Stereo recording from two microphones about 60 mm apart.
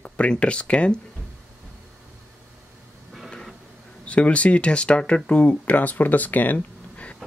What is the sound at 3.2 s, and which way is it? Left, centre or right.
Printer, centre.